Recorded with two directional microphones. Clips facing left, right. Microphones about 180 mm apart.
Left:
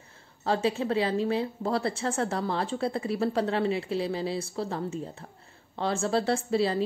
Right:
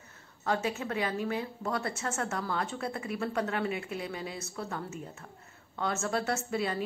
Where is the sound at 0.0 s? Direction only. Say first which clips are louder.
Left 3 dB; 30° left (ahead or behind).